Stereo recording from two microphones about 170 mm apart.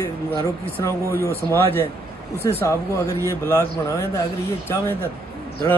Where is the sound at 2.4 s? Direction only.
15° left (ahead or behind).